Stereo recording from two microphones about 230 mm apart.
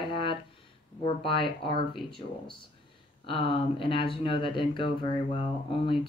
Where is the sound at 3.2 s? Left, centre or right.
Left.